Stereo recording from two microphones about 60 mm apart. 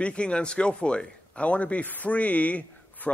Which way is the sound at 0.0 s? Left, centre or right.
Centre.